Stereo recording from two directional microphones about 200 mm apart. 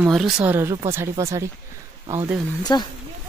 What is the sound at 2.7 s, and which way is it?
Speech, 20° left (ahead or behind).